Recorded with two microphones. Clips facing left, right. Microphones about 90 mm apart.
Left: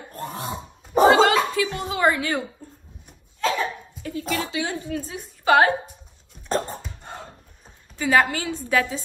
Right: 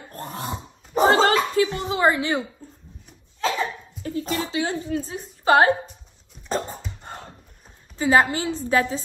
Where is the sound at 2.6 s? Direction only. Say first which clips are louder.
Even; 5° left (ahead or behind).